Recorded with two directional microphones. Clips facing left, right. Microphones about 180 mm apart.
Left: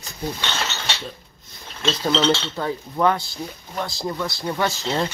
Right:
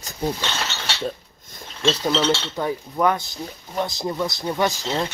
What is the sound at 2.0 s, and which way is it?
Speech, 10° right (ahead or behind).